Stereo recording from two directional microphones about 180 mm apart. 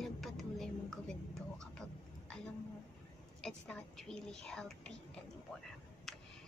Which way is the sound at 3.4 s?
5° left (ahead or behind).